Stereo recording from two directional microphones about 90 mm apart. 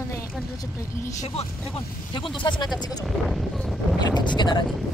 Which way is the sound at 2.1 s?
65° left (ahead or behind).